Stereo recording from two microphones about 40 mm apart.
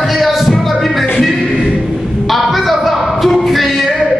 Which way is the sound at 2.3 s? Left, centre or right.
Centre.